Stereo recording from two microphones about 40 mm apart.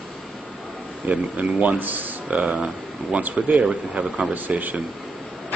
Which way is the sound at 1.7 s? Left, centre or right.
Right.